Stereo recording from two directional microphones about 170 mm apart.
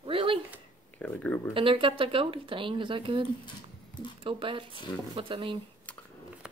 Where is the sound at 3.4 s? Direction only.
25° left (ahead or behind).